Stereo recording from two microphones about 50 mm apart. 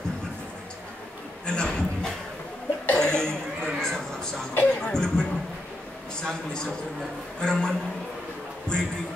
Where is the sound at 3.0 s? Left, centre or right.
Centre.